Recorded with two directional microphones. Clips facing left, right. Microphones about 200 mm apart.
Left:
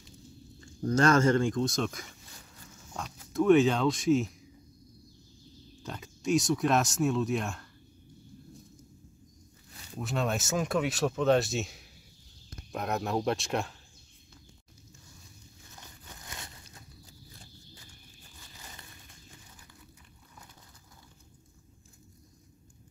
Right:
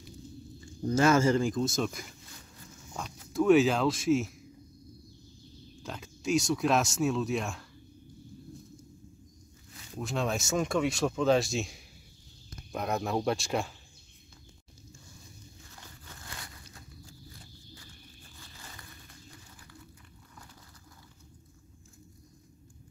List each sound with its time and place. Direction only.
0.9 s speech: 5° right (ahead or behind)
5.8 s speech: centre (ahead or behind)
9.9 s speech: centre (ahead or behind)
15.7 s biting: 20° left (ahead or behind)
17.0 s a sound: 20° left (ahead or behind)
18.4 s zipper: 20° left (ahead or behind)